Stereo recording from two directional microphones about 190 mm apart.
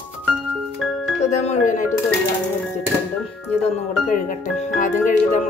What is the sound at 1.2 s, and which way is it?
Music, 35° left (ahead or behind).